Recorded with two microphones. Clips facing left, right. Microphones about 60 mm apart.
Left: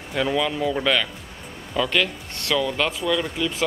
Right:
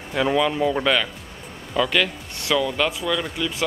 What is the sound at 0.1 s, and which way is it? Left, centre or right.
Speech, centre.